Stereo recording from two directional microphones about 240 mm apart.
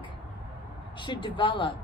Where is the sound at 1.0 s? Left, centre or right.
Centre.